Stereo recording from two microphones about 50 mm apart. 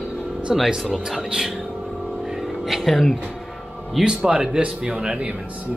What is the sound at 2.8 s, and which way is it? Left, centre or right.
Speech, centre.